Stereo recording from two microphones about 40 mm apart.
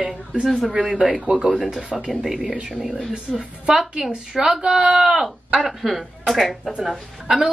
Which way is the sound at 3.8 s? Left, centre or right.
Centre.